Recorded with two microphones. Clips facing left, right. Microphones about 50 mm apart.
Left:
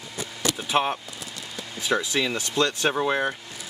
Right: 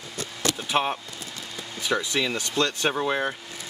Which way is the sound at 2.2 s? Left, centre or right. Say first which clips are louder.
Left 1 dB; centre.